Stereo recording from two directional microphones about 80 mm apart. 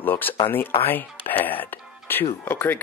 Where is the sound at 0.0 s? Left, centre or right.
Left.